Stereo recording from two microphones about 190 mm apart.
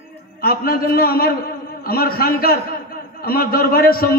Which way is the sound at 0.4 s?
50° left (ahead or behind).